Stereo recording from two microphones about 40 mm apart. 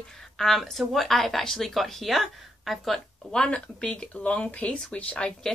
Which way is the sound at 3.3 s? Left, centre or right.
Centre.